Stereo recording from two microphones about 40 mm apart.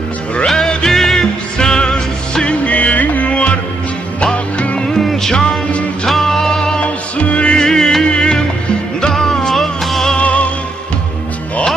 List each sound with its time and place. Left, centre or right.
0.7 s music: centre
1.6 s music: centre
2.6 s music: left
4.7 s music: centre
6.8 s music: left
7.6 s music: centre
9.5 s music: centre
10.1 s music: left